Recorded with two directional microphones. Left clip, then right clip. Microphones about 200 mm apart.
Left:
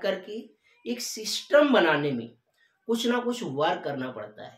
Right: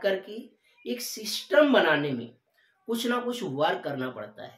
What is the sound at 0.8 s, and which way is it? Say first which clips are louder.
Speech: left 1 dB; 15° left (ahead or behind).